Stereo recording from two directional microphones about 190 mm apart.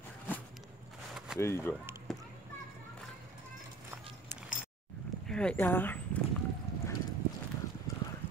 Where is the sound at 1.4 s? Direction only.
10° left (ahead or behind).